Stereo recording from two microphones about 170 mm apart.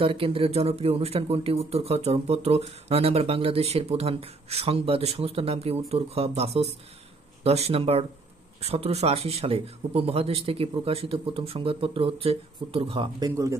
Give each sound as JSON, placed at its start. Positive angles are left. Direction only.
{"t": 0.0, "sound": "speech", "side_deg": -35}